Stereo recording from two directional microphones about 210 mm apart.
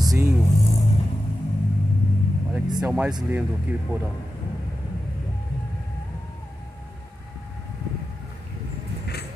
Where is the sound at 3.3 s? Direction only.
10° right (ahead or behind).